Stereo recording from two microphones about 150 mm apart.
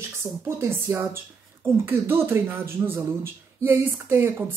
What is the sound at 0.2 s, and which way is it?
Speech, 15° right (ahead or behind).